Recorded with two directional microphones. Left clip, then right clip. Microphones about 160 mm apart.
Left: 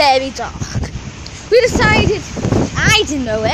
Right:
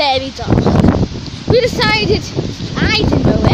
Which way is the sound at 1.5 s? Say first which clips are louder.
Left 2 dB; 15° right (ahead or behind).